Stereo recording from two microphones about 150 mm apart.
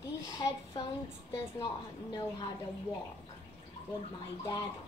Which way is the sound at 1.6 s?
30° left (ahead or behind).